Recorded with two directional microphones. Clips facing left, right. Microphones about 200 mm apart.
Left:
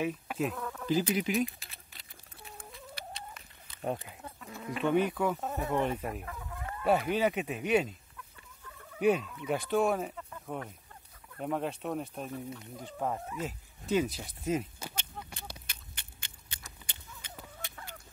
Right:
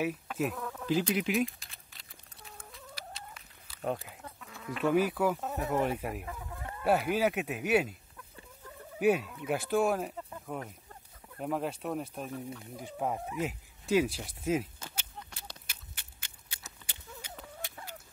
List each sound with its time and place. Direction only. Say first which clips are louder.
0.4 s insect: even; 5° right (ahead or behind)
4.5 s chicken: left 2 dB; 20° left (ahead or behind)
4.7 s speech: right 1 dB; 5° right (ahead or behind)
9.0 s speech: even; 5° right (ahead or behind)
12.7 s speech: right 1 dB; 10° right (ahead or behind)
15.7 s biting: left 1 dB; 5° right (ahead or behind)
17.4 s a sound: left 1 dB; centre (ahead or behind)